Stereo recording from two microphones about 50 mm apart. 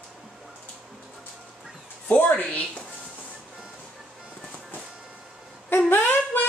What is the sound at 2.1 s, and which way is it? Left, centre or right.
Speech, left.